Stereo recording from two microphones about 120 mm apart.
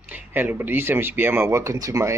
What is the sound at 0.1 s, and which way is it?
Speech, 15° right (ahead or behind).